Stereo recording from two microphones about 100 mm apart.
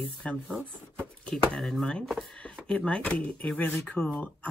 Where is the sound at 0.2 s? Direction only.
10° left (ahead or behind).